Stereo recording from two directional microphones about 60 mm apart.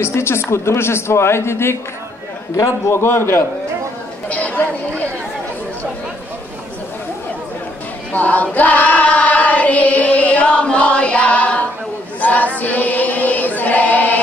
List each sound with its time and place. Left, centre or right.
0.0 s speech: left
2.9 s a man's voice: left
4.3 s a sound: left
8.1 s choir: left
12.2 s a sound: left
12.5 s chant: left